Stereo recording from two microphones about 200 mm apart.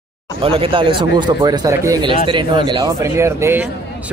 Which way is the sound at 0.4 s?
25° right (ahead or behind).